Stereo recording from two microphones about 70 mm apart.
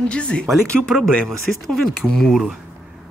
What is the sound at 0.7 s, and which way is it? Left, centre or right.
Speech, centre.